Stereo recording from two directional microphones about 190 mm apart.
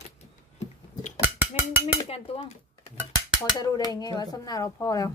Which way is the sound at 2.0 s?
30° left (ahead or behind).